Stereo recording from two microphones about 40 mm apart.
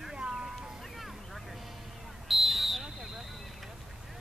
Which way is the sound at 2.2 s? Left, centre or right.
Centre.